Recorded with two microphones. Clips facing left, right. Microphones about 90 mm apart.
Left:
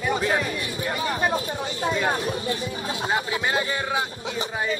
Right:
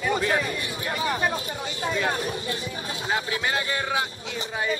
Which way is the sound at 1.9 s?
15° left (ahead or behind).